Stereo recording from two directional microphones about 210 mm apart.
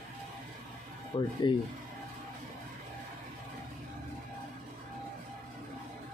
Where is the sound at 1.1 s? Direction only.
30° left (ahead or behind).